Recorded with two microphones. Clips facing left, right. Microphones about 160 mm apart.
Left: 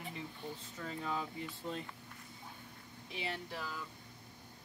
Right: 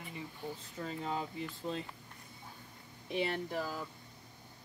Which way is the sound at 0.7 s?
25° right (ahead or behind).